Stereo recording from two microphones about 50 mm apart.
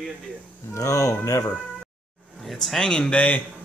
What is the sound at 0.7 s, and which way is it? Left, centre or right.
Speech, left.